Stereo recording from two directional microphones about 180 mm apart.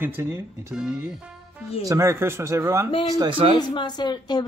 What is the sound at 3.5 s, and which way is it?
Speech, 25° left (ahead or behind).